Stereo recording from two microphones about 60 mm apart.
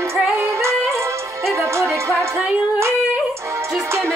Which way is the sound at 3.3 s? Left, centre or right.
Right.